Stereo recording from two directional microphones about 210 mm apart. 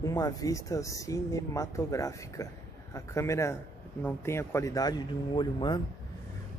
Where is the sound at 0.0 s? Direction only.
15° left (ahead or behind).